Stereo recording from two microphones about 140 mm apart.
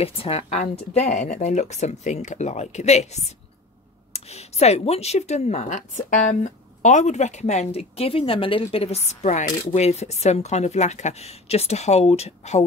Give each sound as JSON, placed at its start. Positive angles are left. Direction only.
{"t": 0.0, "sound": "speech", "side_deg": 45}